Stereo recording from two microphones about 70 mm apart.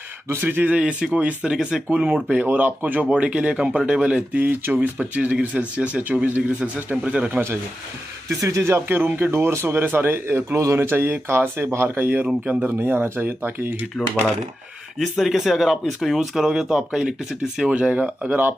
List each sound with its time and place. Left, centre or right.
0.3 s speech: right
7.2 s speech: right
8.3 s speech: right
15.0 s speech: centre; by 18.5 s right